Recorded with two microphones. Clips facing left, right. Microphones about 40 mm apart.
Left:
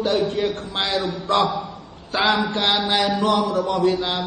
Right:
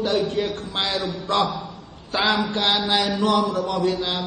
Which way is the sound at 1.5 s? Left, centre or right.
Left.